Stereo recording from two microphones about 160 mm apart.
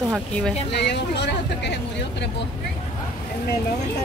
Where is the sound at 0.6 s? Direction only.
90° left.